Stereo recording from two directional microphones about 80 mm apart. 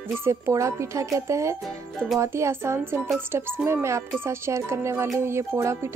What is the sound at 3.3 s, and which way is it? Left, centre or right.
Speech, right.